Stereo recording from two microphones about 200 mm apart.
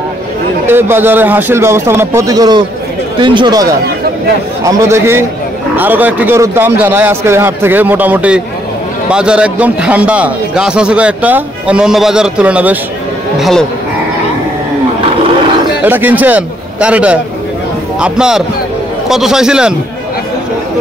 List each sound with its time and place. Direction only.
0.7 s a man's voice: 10° right (ahead or behind)
15.8 s a man's voice: 10° right (ahead or behind)